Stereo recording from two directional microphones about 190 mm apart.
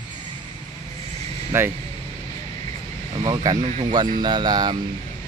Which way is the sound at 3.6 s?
35° right (ahead or behind).